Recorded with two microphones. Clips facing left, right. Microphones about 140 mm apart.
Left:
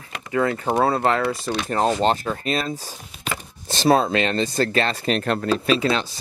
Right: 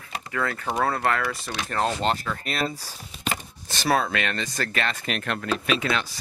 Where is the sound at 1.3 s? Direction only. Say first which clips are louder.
Left 6 dB; 35° left (ahead or behind).